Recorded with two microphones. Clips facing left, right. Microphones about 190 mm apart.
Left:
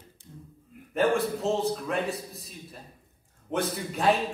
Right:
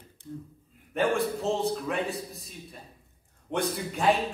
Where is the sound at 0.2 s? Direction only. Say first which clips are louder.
Right 13 dB; 60° right (ahead or behind).